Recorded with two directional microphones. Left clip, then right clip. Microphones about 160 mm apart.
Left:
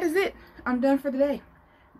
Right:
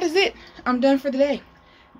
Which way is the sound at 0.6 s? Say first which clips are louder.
Right 5 dB; 10° right (ahead or behind).